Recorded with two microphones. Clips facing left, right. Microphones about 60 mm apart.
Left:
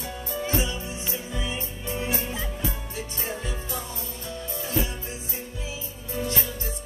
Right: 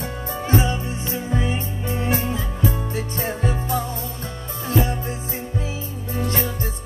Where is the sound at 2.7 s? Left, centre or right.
Right.